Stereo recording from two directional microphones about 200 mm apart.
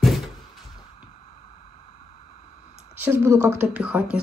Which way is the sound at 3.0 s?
10° right (ahead or behind).